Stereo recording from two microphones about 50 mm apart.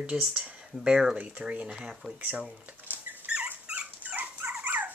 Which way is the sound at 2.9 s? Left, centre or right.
Right.